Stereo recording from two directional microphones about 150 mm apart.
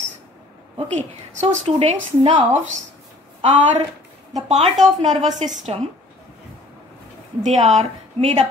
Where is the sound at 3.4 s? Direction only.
45° right (ahead or behind).